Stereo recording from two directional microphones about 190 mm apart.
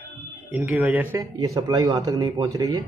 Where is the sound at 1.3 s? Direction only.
20° right (ahead or behind).